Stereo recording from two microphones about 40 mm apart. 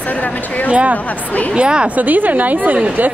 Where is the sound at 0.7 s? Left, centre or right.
Right.